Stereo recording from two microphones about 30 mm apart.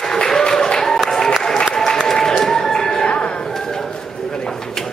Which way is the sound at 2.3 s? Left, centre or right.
Centre.